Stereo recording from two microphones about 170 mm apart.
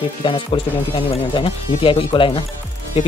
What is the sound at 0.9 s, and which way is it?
Speech, 35° left (ahead or behind).